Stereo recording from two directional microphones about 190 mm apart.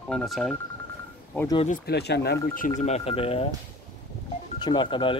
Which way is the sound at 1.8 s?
60° left (ahead or behind).